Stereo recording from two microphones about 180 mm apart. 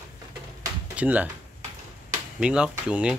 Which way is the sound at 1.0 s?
10° right (ahead or behind).